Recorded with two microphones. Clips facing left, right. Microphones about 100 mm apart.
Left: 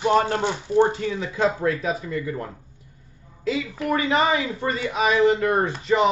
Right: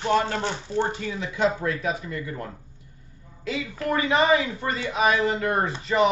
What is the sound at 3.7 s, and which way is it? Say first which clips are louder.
Speech: right 1 dB; 20° left (ahead or behind).